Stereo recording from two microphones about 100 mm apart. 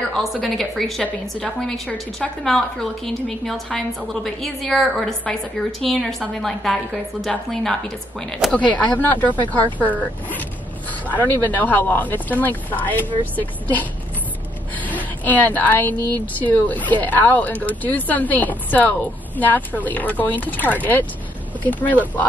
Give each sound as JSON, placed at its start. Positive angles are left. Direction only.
{"t": 0.1, "sound": "a woman's voice", "side_deg": 0}
{"t": 8.5, "sound": "speech", "side_deg": 15}
{"t": 11.1, "sound": "speech", "side_deg": 20}
{"t": 14.9, "sound": "speech", "side_deg": 15}